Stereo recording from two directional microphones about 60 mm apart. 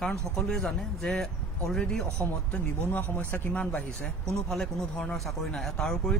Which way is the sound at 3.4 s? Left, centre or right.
Left.